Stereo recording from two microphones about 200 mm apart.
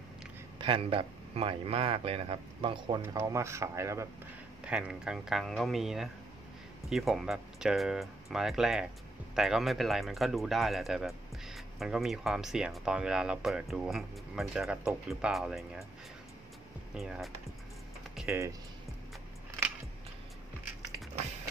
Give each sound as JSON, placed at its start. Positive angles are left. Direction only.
{"t": 0.6, "sound": "speech", "side_deg": -25}
{"t": 16.9, "sound": "speech", "side_deg": 0}
{"t": 18.2, "sound": "typing", "side_deg": 0}